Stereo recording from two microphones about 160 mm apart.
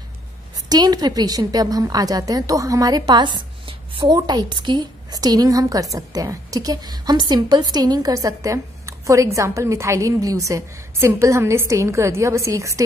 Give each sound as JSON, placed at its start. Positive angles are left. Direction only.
{"t": 0.7, "sound": "a woman's voice", "side_deg": -25}